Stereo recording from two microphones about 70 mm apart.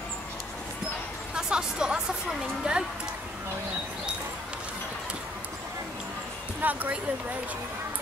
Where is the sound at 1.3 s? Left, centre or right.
Centre.